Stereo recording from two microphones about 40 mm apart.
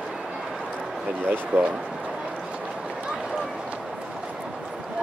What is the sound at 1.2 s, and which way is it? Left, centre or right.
Speech, right.